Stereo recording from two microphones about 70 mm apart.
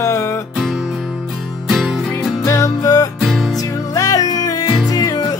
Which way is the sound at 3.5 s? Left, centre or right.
Left.